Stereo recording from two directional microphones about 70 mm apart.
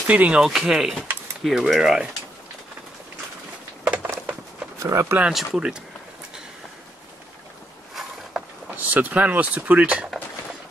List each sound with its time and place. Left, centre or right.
0.0 s speech: right
0.4 s speech: centre
3.8 s a sound: centre
4.7 s speech: right
5.3 s speech: centre
7.9 s a sound: centre
8.6 s speech: right